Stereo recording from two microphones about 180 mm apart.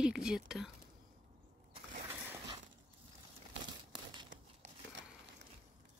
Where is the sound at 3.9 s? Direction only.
25° right (ahead or behind).